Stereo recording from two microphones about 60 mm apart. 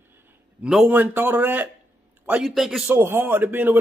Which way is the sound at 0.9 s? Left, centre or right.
Right.